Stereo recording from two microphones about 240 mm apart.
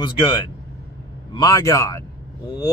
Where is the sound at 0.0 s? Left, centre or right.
Centre.